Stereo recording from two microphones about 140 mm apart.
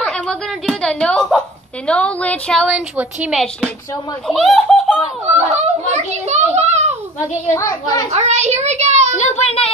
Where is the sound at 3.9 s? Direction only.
25° left (ahead or behind).